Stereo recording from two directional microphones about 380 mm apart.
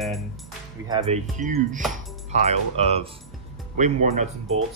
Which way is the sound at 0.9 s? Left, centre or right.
Centre.